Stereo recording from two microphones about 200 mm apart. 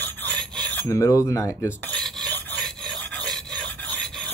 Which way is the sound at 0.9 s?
15° left (ahead or behind).